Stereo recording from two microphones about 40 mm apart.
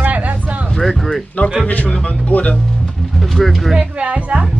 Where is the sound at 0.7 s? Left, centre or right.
Centre.